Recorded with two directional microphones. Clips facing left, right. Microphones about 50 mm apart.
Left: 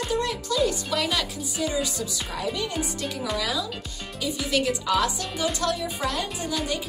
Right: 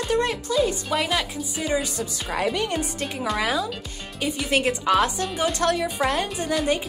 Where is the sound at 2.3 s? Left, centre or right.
Right.